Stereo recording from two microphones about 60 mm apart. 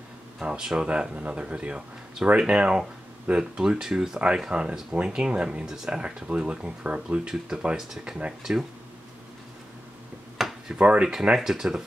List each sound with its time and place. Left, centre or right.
0.4 s speech: centre
10.7 s speech: centre